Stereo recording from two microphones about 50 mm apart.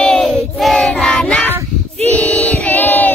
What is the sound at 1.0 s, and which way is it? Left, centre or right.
Speech, centre.